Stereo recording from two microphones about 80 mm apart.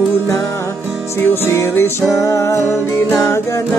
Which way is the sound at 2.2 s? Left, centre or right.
Left.